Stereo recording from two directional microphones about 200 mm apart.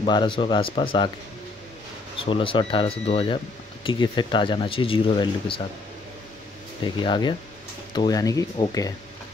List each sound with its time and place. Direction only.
0.0 s speech: 25° left (ahead or behind)
2.1 s speech: 25° left (ahead or behind)
7.0 s speech: 20° left (ahead or behind)